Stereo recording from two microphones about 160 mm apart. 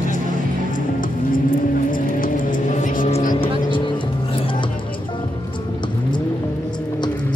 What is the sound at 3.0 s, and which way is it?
Vehicle, 55° left (ahead or behind).